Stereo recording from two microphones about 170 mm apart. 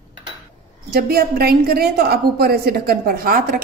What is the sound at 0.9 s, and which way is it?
A woman's voice, 65° right (ahead or behind).